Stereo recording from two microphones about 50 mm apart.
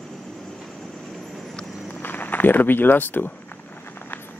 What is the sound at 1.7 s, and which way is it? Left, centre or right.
Walk, centre.